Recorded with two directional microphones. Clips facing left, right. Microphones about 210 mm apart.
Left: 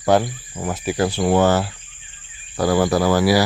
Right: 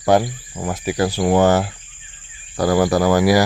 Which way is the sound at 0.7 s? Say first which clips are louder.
Right 1 dB; 10° right (ahead or behind).